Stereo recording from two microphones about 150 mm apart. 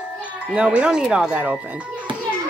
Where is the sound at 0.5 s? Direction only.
5° right (ahead or behind).